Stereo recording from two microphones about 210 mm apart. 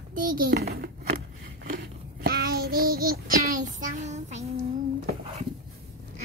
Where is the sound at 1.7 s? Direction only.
45° right (ahead or behind).